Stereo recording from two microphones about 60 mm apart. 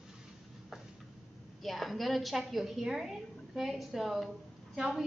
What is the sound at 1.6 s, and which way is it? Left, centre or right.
A woman's voice, centre.